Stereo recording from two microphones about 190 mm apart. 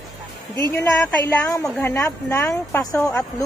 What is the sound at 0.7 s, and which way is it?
A woman's voice, 15° left (ahead or behind).